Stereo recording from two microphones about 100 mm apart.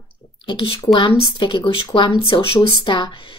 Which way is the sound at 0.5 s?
60° left (ahead or behind).